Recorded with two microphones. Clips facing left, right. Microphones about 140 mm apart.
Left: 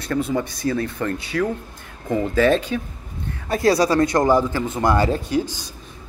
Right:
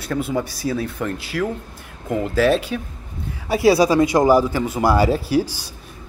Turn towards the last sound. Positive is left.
turn(degrees=-5)  # may be behind; listen again after turning